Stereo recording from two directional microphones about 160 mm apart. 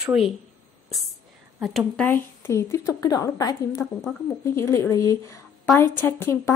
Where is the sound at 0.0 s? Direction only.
5° right (ahead or behind).